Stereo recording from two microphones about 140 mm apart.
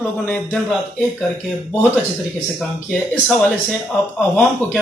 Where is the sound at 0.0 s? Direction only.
10° left (ahead or behind).